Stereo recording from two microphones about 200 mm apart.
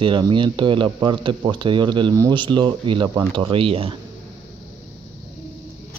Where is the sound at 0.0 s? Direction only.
25° right (ahead or behind).